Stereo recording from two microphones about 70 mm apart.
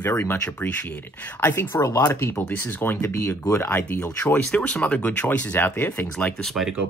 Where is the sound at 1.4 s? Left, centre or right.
Left.